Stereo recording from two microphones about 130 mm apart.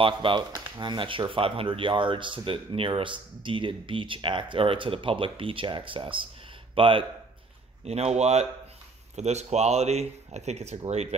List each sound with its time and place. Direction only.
0.0 s a man's voice: 40° right (ahead or behind)
7.8 s speech: 55° right (ahead or behind)